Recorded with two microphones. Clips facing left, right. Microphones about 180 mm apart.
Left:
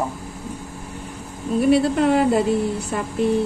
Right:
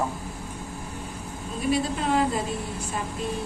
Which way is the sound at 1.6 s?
65° left (ahead or behind).